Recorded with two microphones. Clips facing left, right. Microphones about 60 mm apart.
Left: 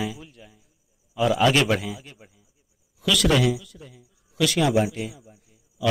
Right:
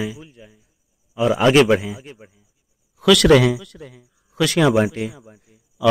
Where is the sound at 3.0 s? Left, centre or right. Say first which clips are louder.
Right 8 dB; right.